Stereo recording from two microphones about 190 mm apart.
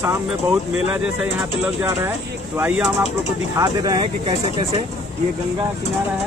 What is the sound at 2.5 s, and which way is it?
Speech, 10° right (ahead or behind).